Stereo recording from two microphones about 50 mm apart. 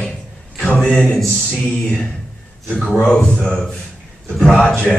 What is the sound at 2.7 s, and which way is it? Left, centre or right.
Speech, centre.